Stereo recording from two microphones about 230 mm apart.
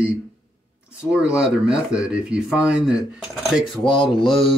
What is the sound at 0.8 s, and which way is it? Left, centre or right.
Speech, centre.